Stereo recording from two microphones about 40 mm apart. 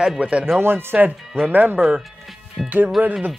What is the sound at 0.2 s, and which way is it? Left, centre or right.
Speech, right.